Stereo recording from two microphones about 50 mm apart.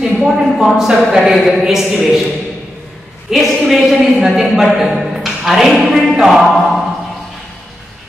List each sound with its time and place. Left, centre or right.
0.0 s a woman's voice: centre
3.3 s a woman's voice: centre